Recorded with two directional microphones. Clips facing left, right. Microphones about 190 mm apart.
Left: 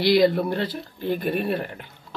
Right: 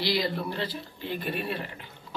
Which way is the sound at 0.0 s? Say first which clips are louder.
Left 10 dB; 55° left (ahead or behind).